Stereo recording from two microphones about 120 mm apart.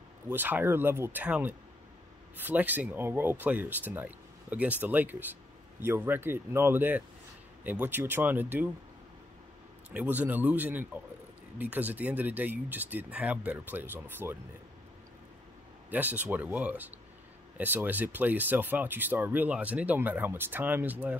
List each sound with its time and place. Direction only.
0.3 s speech: 15° right (ahead or behind)
9.9 s speech: 15° right (ahead or behind)
15.9 s speech: 15° right (ahead or behind)